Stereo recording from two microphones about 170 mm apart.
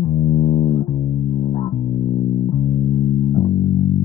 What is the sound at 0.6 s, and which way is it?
Music, 30° left (ahead or behind).